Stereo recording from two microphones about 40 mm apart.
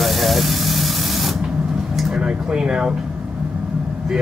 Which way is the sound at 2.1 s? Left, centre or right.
Centre.